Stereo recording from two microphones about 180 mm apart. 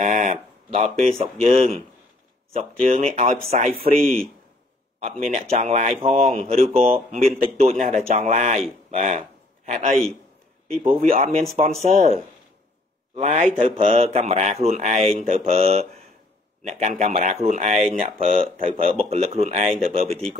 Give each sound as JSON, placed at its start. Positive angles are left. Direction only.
{"t": 0.0, "sound": "speech", "side_deg": -45}
{"t": 5.2, "sound": "a man's voice", "side_deg": -40}